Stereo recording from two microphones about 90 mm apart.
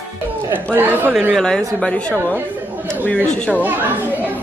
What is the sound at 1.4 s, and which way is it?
Speech, 10° left (ahead or behind).